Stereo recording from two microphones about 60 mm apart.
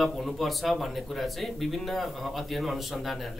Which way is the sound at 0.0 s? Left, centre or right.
Centre.